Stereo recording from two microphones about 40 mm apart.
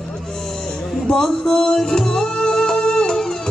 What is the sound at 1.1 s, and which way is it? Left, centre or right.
Music, centre.